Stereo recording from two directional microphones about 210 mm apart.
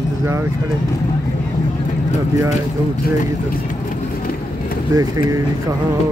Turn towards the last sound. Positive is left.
turn(degrees=-15)  # may be behind; listen again after turning